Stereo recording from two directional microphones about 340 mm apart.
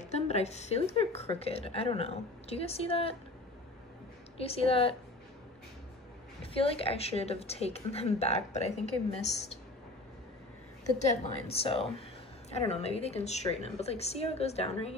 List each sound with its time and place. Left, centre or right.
0.0 s speech: centre
4.4 s speech: centre
6.4 s a woman's voice: centre
11.0 s a woman's voice: centre